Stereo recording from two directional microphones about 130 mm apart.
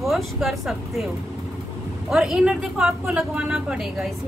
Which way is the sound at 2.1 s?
5° right (ahead or behind).